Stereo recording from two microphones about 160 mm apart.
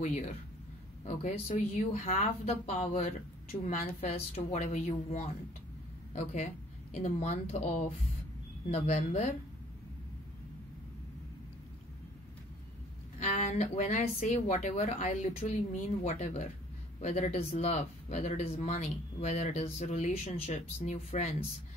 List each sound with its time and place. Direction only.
0.0 s speech: 50° left (ahead or behind)
3.6 s a woman's voice: 55° left (ahead or behind)
4.4 s speech: 45° left (ahead or behind)
13.2 s speech: 50° left (ahead or behind)